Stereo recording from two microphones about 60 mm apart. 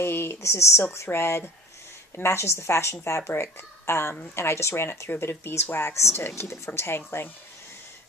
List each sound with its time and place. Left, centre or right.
0.0 s a woman's voice: left